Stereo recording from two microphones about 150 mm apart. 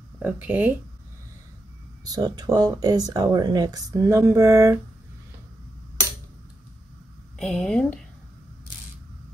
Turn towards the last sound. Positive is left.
turn(degrees=5)  # may be behind; listen again after turning